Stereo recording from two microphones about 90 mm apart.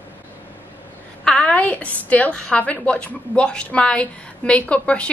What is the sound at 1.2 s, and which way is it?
A woman's voice, 10° left (ahead or behind).